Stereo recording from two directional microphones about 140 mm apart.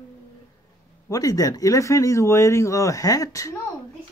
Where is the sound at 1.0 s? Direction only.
25° left (ahead or behind).